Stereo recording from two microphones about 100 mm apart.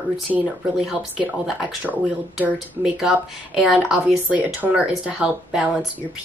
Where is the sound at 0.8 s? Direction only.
10° right (ahead or behind).